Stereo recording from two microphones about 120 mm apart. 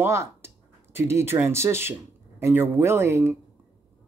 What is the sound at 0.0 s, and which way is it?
Speech, 25° right (ahead or behind).